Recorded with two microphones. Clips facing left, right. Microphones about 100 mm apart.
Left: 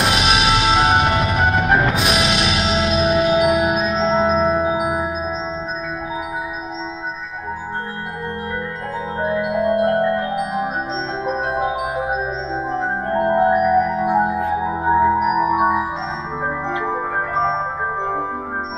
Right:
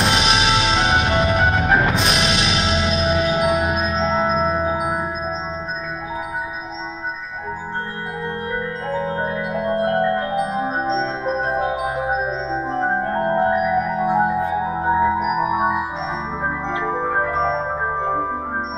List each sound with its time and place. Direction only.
0.0 s music: 5° left (ahead or behind)
3.3 s marimba: 5° left (ahead or behind)
10.5 s music: 10° left (ahead or behind)
12.5 s marimba: centre (ahead or behind)
13.2 s music: 15° left (ahead or behind); by 15.5 s centre (ahead or behind)
15.5 s music: 10° left (ahead or behind)